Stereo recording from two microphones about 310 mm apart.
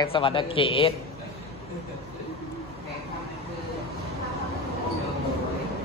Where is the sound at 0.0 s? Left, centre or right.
Centre.